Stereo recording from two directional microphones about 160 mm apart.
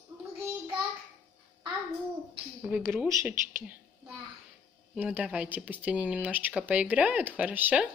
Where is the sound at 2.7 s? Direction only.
5° right (ahead or behind).